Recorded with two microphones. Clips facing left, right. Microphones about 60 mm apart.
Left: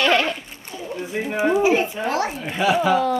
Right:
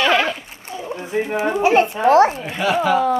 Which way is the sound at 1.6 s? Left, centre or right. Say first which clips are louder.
Right 4 dB; right.